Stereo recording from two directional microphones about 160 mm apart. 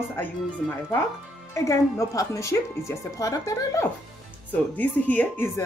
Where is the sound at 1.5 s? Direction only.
20° left (ahead or behind).